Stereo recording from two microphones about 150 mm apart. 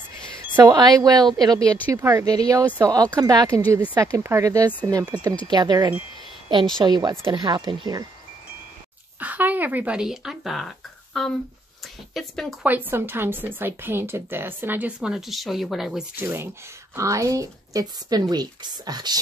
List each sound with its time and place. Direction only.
0.6 s a woman's voice: 25° right (ahead or behind)
9.2 s a woman's voice: 10° right (ahead or behind)
12.6 s a woman's voice: 15° right (ahead or behind)
16.2 s speech: 15° right (ahead or behind)